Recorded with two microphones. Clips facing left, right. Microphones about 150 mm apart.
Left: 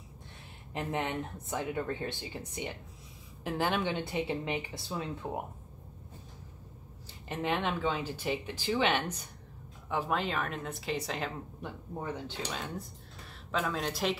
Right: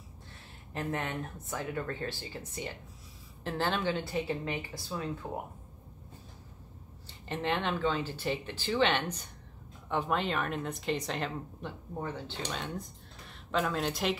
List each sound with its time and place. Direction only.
0.7 s speech: 20° left (ahead or behind)
7.1 s a woman's voice: 5° left (ahead or behind)